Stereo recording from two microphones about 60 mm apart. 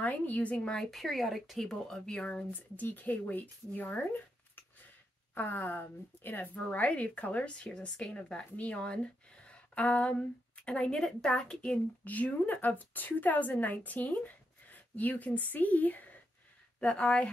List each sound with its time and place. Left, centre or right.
0.0 s a woman's voice: left
0.7 s speech: centre; by 4.2 s left
5.3 s a woman's voice: left
11.0 s speech: centre
12.0 s a woman's voice: left
16.8 s speech: centre